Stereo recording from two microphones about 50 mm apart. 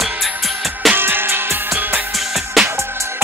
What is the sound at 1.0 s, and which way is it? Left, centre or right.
Music, right.